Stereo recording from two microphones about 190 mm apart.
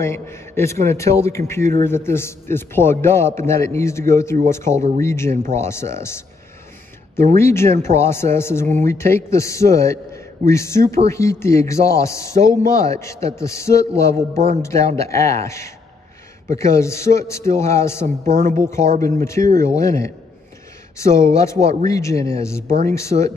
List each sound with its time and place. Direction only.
0.0 s speech: 15° left (ahead or behind)
7.3 s speech: 15° left (ahead or behind)
18.0 s speech: 40° right (ahead or behind)
19.1 s speech: 15° left (ahead or behind)